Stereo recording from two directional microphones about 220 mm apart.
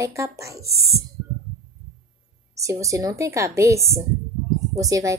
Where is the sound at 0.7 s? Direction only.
45° right (ahead or behind).